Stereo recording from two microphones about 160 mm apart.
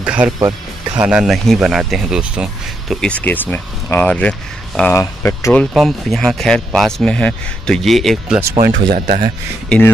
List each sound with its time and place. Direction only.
0.0 s speech: 5° right (ahead or behind)
0.4 s speech: 25° right (ahead or behind)
1.0 s speech: 5° right (ahead or behind)
2.9 s speech: 5° left (ahead or behind)
5.7 s speech: centre (ahead or behind)
8.5 s speech: 70° right (ahead or behind)